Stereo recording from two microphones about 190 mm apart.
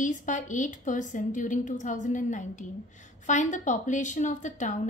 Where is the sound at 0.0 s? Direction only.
40° left (ahead or behind).